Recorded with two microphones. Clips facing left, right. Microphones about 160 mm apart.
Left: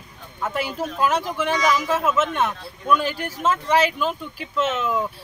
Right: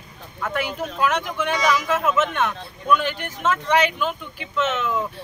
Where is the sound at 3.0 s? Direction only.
35° left (ahead or behind).